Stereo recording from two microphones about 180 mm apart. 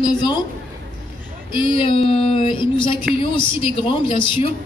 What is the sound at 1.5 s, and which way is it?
Child singing, 25° left (ahead or behind).